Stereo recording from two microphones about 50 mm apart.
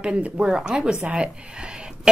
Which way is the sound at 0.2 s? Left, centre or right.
Right.